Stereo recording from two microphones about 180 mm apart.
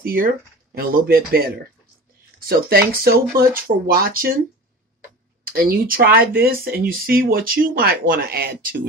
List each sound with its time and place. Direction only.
0.0 s speech: 55° right (ahead or behind)
5.5 s speech: 55° right (ahead or behind)